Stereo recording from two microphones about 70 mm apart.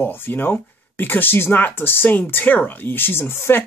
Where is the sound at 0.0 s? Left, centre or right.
Left.